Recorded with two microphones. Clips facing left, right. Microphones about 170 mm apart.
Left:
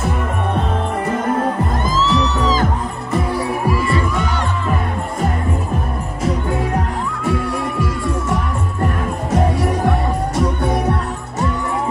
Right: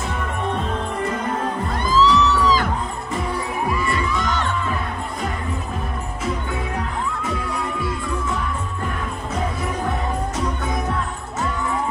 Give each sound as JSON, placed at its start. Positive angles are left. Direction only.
{"t": 1.9, "sound": "music", "side_deg": 45}
{"t": 4.2, "sound": "music", "side_deg": 10}
{"t": 9.3, "sound": "music", "side_deg": 75}